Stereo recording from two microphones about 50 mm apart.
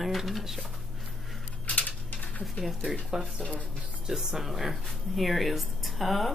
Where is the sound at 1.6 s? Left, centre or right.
Left.